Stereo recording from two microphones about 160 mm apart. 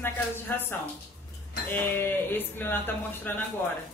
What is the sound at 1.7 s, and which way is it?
Speech, 15° left (ahead or behind).